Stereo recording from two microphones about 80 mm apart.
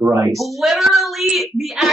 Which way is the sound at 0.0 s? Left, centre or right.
Right.